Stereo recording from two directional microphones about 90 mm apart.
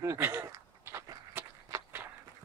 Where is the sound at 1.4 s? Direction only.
25° right (ahead or behind).